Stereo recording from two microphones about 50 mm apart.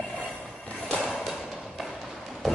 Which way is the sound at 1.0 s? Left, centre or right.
Centre.